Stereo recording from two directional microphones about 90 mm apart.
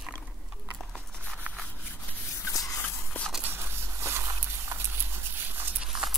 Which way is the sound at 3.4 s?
25° right (ahead or behind).